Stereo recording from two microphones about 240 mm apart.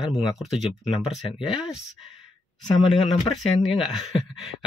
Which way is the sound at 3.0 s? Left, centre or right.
Centre.